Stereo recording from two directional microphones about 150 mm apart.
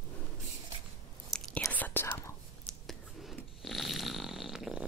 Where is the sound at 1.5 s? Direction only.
10° left (ahead or behind).